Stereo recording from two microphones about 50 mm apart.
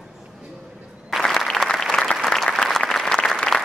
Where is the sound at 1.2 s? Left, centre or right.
Centre.